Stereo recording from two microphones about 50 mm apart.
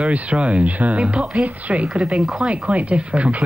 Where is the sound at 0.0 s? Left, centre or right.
Right.